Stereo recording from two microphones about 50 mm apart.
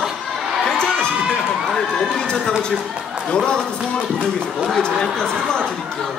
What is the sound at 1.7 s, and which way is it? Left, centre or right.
A man's voice, centre.